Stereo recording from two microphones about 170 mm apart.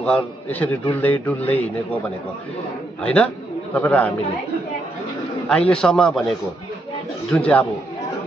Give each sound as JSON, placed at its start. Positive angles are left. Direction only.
{"t": 0.0, "sound": "a man's voice", "side_deg": 10}
{"t": 5.5, "sound": "a man's voice", "side_deg": 5}